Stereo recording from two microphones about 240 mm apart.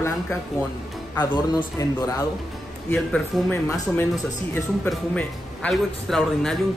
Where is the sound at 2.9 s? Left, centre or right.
Centre.